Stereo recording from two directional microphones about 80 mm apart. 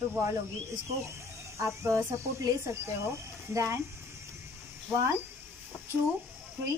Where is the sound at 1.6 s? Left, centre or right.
Right.